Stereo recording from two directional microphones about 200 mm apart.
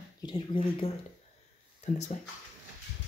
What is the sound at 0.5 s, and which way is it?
Speech, 25° left (ahead or behind).